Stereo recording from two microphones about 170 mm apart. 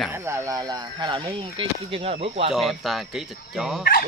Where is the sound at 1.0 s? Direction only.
30° right (ahead or behind).